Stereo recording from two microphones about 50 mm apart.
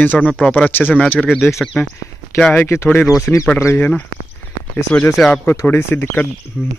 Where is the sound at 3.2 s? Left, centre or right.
Left.